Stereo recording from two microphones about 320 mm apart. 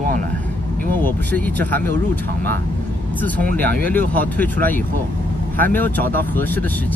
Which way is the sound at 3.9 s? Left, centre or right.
Centre.